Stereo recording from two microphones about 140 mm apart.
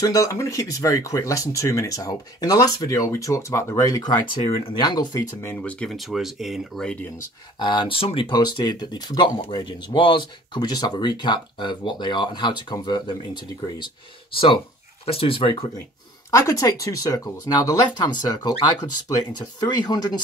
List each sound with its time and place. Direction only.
0.0 s speech: 25° left (ahead or behind)
5.5 s speech: 10° left (ahead or behind)
7.5 s speech: 35° left (ahead or behind)
16.3 s speech: 25° left (ahead or behind)